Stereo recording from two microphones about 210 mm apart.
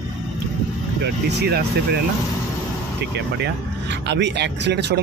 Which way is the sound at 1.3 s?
50° right (ahead or behind).